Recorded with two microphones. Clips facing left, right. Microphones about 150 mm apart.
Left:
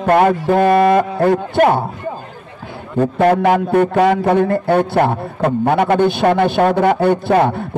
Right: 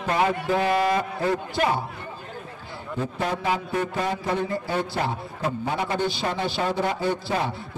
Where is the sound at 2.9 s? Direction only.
60° left (ahead or behind).